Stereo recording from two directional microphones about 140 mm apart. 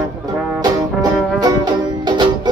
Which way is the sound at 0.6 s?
30° right (ahead or behind).